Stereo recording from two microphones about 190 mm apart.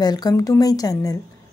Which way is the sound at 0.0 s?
20° left (ahead or behind).